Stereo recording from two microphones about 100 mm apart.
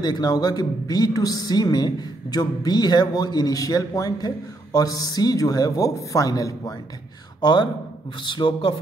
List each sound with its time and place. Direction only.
0.0 s a woman's voice: 40° left (ahead or behind)
8.2 s speech: 50° left (ahead or behind)